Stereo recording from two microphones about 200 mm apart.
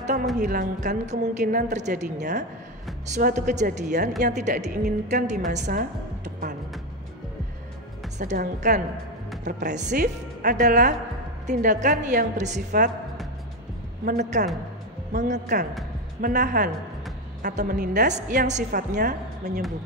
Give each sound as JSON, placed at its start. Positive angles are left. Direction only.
{"t": 0.0, "sound": "music", "side_deg": -35}
{"t": 0.4, "sound": "a woman's voice", "side_deg": -40}
{"t": 8.2, "sound": "a woman's voice", "side_deg": -40}
{"t": 14.0, "sound": "a woman's voice", "side_deg": -50}
{"t": 15.1, "sound": "a woman's voice", "side_deg": -35}
{"t": 16.2, "sound": "a woman's voice", "side_deg": -50}